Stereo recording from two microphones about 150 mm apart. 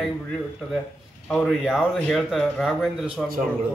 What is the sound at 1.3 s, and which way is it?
Speech, centre (ahead or behind).